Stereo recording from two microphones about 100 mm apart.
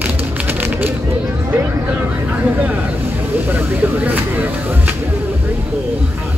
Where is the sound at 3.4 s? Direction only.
20° right (ahead or behind).